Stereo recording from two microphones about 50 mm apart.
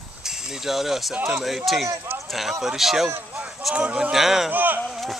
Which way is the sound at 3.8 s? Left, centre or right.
Right.